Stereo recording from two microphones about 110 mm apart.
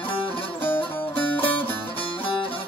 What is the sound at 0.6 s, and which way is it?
Music, 20° left (ahead or behind).